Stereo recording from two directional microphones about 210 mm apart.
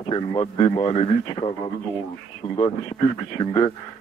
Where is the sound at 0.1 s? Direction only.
20° left (ahead or behind).